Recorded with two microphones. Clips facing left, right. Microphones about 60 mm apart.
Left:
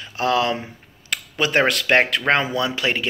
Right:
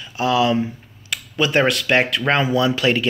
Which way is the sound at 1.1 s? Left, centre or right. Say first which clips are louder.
Right 1 dB; left.